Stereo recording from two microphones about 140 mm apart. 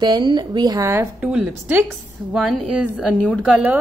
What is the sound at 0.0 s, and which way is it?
A woman's voice, 35° right (ahead or behind).